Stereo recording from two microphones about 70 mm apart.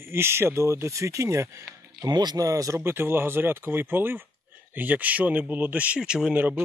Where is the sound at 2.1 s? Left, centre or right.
Right.